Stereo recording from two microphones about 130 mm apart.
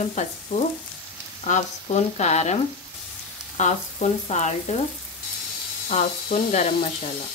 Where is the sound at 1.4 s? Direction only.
60° left (ahead or behind).